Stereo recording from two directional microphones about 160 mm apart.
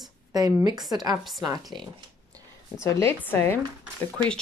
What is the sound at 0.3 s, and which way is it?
Speech, 20° right (ahead or behind).